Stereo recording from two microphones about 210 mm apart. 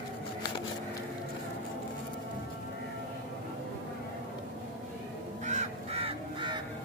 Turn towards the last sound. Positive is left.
turn(degrees=-20)  # may be behind; listen again after turning